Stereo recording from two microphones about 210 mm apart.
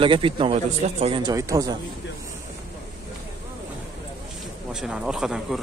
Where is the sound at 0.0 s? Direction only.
25° right (ahead or behind).